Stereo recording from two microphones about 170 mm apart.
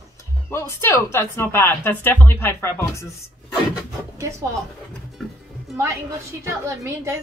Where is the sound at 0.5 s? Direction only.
15° left (ahead or behind).